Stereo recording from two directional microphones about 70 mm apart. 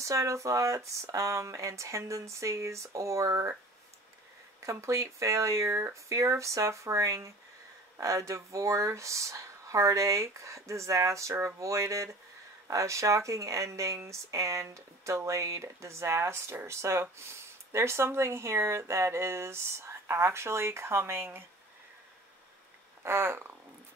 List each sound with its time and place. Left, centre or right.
0.0 s speech: right
4.6 s speech: right
23.0 s speech: right